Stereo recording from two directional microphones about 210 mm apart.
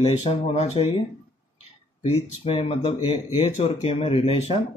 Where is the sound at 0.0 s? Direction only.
30° left (ahead or behind).